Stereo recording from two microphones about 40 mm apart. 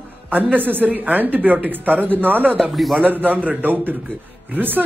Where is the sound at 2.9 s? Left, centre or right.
Right.